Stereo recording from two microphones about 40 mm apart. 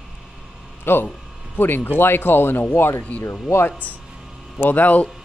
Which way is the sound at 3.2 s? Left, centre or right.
Left.